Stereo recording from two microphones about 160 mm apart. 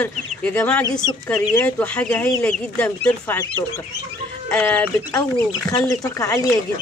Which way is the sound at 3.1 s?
20° left (ahead or behind).